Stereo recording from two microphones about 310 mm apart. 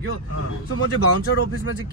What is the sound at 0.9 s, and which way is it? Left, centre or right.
Speech, left.